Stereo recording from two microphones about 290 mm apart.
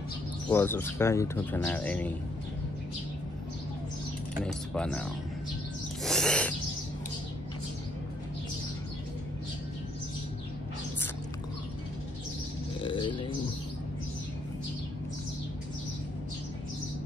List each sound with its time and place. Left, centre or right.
0.5 s speech: centre
4.4 s speech: centre
6.0 s owl: centre
12.7 s a sound: centre